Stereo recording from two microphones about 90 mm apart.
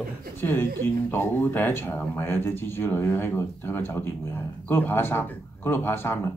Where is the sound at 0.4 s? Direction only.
20° left (ahead or behind).